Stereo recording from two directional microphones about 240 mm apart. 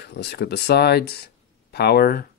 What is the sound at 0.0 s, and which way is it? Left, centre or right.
Speech, left.